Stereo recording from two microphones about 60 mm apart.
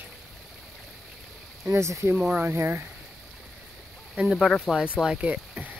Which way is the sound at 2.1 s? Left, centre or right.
Right.